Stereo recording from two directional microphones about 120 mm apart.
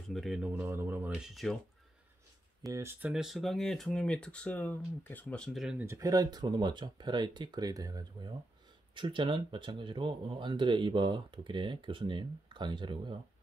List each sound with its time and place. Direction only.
0.1 s speech: centre (ahead or behind)
0.5 s speech: 20° right (ahead or behind)
1.1 s speech: centre (ahead or behind)
2.6 s speech: 25° right (ahead or behind)
3.1 s speech: 5° right (ahead or behind)
5.9 s speech: 30° right (ahead or behind)
8.9 s speech: 45° right (ahead or behind)